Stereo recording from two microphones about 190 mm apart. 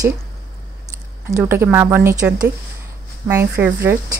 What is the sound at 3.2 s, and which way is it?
Speech, 10° right (ahead or behind).